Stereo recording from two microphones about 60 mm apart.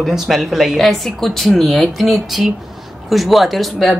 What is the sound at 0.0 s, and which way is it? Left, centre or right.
Speech, centre.